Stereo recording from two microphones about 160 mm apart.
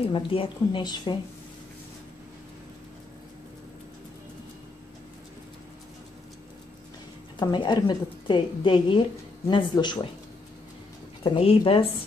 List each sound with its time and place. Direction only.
0.1 s a woman's voice: 35° left (ahead or behind)
7.3 s a woman's voice: 25° left (ahead or behind)
11.3 s speech: 35° left (ahead or behind)